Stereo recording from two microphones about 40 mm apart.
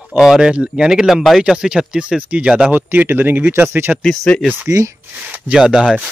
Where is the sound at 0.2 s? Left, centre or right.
Centre.